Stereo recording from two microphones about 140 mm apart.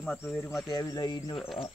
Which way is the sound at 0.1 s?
15° left (ahead or behind).